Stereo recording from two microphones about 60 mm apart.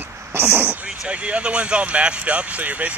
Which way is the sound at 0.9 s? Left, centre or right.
Centre.